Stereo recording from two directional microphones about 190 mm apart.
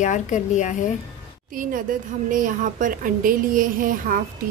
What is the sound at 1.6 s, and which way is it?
A woman's voice, 45° right (ahead or behind).